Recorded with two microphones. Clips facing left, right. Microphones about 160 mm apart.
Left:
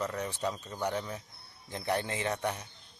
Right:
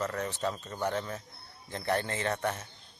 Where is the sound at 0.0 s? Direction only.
15° left (ahead or behind).